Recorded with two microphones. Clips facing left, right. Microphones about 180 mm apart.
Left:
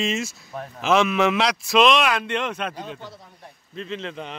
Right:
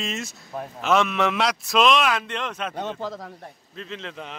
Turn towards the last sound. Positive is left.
turn(degrees=0)  # may be behind; listen again after turning